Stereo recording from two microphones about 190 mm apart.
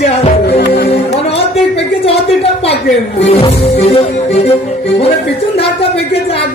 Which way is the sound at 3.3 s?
30° left (ahead or behind).